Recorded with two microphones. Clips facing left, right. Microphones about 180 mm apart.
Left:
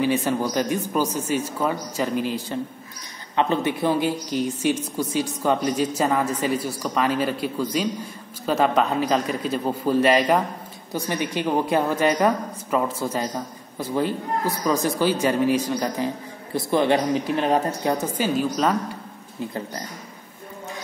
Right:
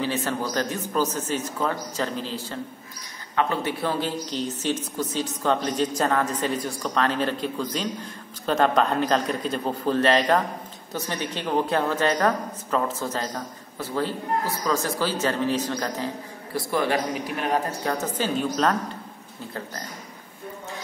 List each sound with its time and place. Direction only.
0.0 s a woman's voice: 15° left (ahead or behind)
17.9 s a woman's voice: 10° left (ahead or behind)